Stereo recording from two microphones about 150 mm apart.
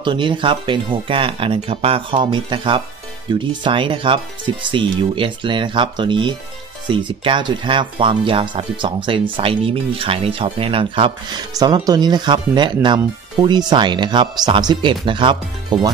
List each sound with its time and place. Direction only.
0.0 s speech: 30° right (ahead or behind)